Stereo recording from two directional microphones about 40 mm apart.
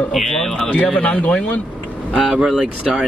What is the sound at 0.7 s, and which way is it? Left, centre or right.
Speech, left.